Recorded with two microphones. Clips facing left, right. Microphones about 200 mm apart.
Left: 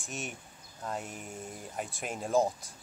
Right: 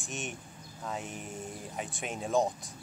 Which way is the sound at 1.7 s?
Centre (ahead or behind).